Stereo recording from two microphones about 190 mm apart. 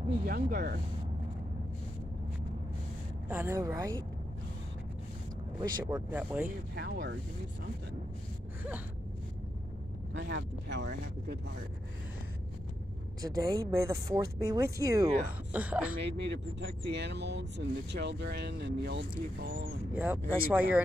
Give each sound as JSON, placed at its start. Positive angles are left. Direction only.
{"t": 0.2, "sound": "speech", "side_deg": -55}
{"t": 3.3, "sound": "speech", "side_deg": -10}
{"t": 5.9, "sound": "speech", "side_deg": -10}
{"t": 6.7, "sound": "speech", "side_deg": -60}
{"t": 10.1, "sound": "speech", "side_deg": -65}
{"t": 13.2, "sound": "speech", "side_deg": -20}
{"t": 16.0, "sound": "speech", "side_deg": -65}
{"t": 19.9, "sound": "speech", "side_deg": -10}